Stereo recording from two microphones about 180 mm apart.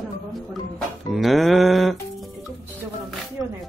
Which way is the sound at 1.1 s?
Centre (ahead or behind).